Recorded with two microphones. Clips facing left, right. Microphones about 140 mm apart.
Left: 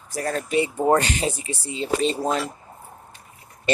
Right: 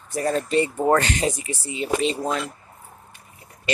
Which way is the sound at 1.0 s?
30° left (ahead or behind).